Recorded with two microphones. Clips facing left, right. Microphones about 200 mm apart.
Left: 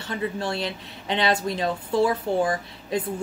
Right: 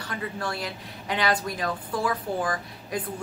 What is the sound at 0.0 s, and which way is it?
Speech, 25° left (ahead or behind).